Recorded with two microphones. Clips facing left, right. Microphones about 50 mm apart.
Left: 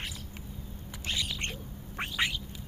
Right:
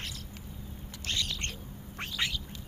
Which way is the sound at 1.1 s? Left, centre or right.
Centre.